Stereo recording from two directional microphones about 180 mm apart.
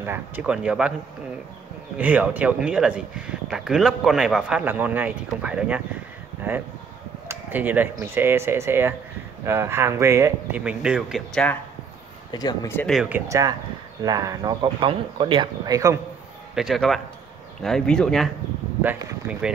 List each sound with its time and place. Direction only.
0.0 s speech: 10° right (ahead or behind)
2.0 s speech: 10° right (ahead or behind)
7.2 s a sound: 10° right (ahead or behind)
7.9 s speech: 15° right (ahead or behind)
12.3 s speech: 20° left (ahead or behind)
12.8 s speech: centre (ahead or behind)
13.3 s speech: 20° right (ahead or behind)
16.5 s speech: centre (ahead or behind)
18.8 s speech: 10° right (ahead or behind)